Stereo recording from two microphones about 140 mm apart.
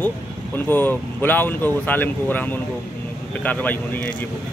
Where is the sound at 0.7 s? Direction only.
15° left (ahead or behind).